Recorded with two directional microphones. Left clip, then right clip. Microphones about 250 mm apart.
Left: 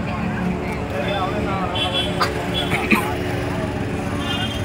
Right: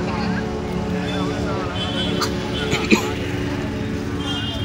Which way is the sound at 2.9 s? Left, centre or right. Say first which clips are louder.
Right 1 dB; centre.